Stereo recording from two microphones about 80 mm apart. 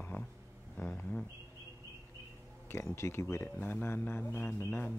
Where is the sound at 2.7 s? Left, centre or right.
Left.